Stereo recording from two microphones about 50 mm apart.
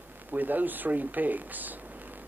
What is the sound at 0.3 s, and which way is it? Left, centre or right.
Speech, right.